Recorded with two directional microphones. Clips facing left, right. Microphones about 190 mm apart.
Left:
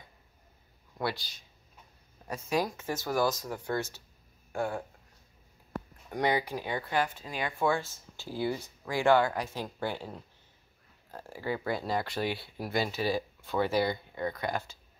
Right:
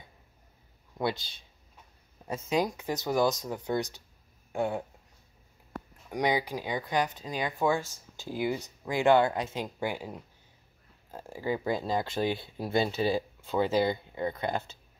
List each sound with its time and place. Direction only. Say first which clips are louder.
0.9 s speech: right 3 dB; 20° right (ahead or behind)
6.0 s speech: right 1 dB; 15° right (ahead or behind)